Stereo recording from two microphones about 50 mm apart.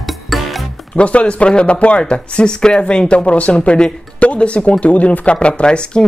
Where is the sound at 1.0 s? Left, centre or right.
Left.